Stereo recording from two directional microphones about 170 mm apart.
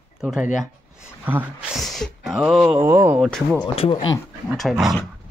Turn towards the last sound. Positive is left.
turn(degrees=0)  # may be behind; listen again after turning